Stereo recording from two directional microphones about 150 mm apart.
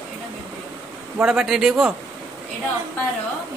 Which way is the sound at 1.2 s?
5° right (ahead or behind).